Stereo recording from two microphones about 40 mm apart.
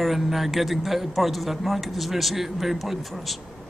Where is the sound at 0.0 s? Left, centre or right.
Centre.